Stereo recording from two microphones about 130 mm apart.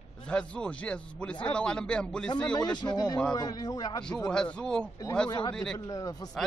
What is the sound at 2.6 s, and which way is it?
A man's voice, 35° left (ahead or behind).